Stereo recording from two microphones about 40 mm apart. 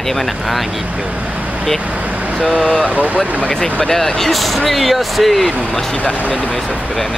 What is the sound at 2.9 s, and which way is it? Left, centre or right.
Speech, right.